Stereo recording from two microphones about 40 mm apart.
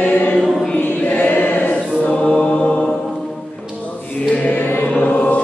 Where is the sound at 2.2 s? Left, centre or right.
Left.